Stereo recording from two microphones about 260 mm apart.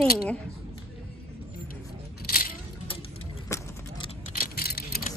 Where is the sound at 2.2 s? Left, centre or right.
Left.